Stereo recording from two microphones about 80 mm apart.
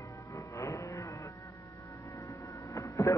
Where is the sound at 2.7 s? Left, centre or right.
Left.